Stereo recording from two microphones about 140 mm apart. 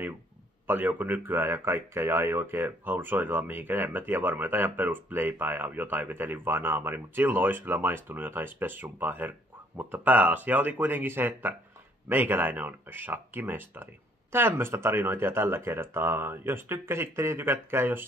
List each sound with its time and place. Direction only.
0.7 s speech: 15° right (ahead or behind)